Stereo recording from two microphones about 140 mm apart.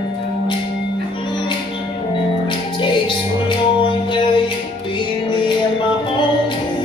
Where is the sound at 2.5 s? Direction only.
35° left (ahead or behind).